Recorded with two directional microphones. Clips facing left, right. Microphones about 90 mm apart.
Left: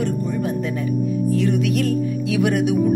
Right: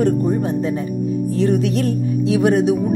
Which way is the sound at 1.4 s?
35° right (ahead or behind).